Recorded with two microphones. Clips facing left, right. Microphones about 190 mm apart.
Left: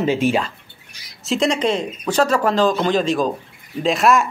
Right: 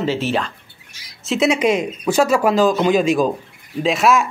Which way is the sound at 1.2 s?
5° right (ahead or behind).